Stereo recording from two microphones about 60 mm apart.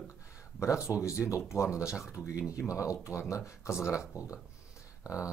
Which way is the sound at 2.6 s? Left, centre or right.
Left.